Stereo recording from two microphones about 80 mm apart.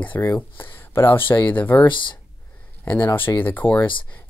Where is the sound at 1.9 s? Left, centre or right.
Left.